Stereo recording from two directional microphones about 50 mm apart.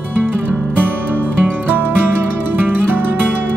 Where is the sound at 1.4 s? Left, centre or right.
Right.